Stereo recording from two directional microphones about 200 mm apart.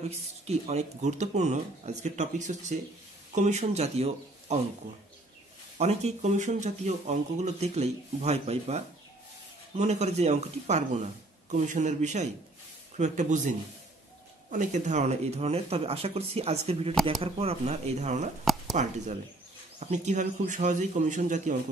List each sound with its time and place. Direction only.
0.5 s speech: 35° right (ahead or behind)
5.8 s speech: 35° right (ahead or behind)
14.5 s speech: 40° right (ahead or behind)